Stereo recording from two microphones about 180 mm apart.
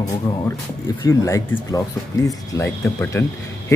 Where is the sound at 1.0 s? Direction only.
20° left (ahead or behind).